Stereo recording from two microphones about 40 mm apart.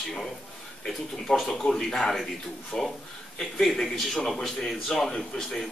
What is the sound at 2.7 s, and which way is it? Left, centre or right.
Speech, left.